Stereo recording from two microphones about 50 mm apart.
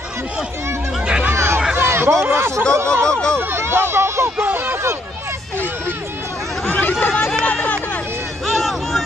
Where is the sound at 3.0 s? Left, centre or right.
Centre.